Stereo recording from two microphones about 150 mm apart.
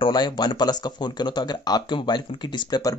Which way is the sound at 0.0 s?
30° left (ahead or behind).